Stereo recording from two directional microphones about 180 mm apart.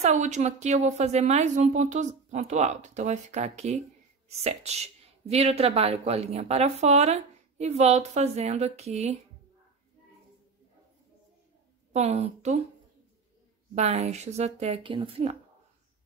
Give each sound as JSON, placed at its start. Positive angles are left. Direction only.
{"t": 0.0, "sound": "speech", "side_deg": -40}
{"t": 11.9, "sound": "speech", "side_deg": -40}
{"t": 13.7, "sound": "speech", "side_deg": -35}